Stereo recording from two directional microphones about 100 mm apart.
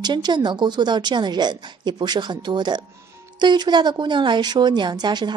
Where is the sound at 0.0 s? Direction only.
45° right (ahead or behind).